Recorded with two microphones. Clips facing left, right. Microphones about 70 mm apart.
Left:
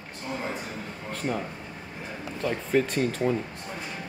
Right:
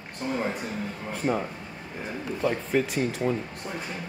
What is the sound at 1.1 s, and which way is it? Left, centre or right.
Speech, centre.